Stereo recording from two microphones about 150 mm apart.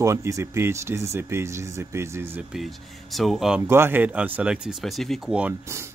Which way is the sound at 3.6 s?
15° right (ahead or behind).